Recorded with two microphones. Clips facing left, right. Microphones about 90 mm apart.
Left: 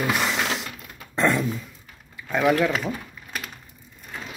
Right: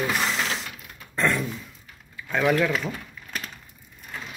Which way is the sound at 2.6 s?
20° left (ahead or behind).